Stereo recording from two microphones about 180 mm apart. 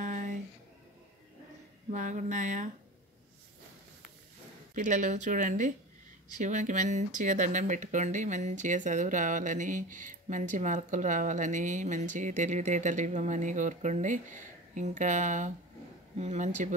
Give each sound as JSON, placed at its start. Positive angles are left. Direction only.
{"t": 0.0, "sound": "a sound", "side_deg": -45}
{"t": 1.9, "sound": "speech", "side_deg": -45}
{"t": 4.7, "sound": "speech", "side_deg": -45}